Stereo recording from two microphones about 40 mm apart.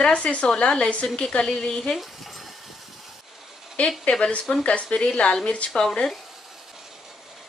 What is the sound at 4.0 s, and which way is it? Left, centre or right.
A woman's voice, left.